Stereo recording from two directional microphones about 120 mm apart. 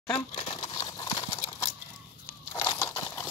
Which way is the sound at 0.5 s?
40° left (ahead or behind).